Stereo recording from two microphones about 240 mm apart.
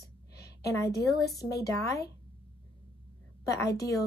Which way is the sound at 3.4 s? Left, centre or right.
Centre.